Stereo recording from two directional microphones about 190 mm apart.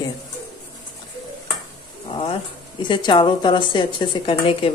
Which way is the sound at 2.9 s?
25° left (ahead or behind).